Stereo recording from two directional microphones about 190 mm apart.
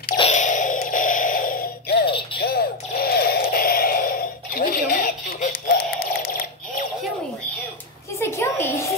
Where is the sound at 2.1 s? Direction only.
30° left (ahead or behind).